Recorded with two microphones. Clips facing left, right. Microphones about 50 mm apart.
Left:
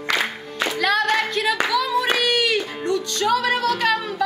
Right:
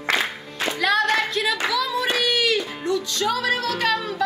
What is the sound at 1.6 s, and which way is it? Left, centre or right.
Singing, centre.